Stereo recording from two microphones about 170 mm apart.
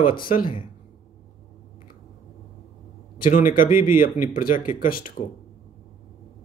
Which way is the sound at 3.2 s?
55° left (ahead or behind).